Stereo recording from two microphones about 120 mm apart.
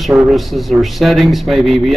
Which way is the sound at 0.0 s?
Centre (ahead or behind).